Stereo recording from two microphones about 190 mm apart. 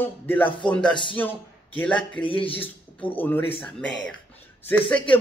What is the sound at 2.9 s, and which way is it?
Speech, 10° left (ahead or behind).